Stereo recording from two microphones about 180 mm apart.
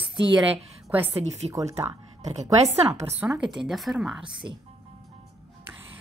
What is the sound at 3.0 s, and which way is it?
Speech, 25° right (ahead or behind).